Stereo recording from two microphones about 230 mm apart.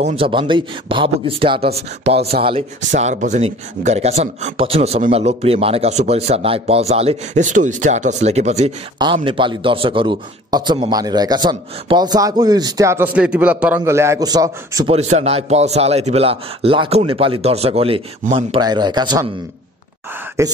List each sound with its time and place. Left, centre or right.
0.0 s speech: right
14.9 s speech: right
20.4 s speech: centre